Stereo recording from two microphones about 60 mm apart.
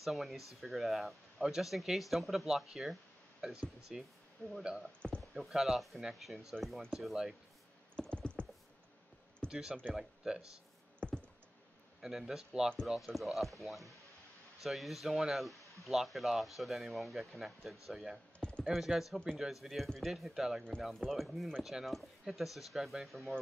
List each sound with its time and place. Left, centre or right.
0.0 s a man's voice: centre
4.4 s speech: centre
5.3 s speech: centre
7.9 s computer keyboard: centre
9.5 s a man's voice: centre
11.0 s a sound: centre
12.0 s a man's voice: centre